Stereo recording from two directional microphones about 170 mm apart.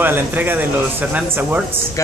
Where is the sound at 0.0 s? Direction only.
10° right (ahead or behind).